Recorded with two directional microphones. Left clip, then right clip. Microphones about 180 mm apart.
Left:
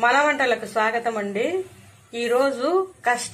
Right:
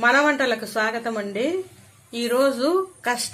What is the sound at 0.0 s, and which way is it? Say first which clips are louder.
Speech: even; 45° right (ahead or behind).